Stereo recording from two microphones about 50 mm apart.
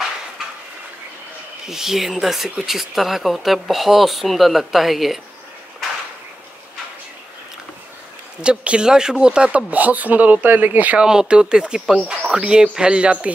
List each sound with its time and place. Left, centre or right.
1.7 s speech: centre
8.4 s speech: centre
9.7 s speech: right
11.0 s speech: centre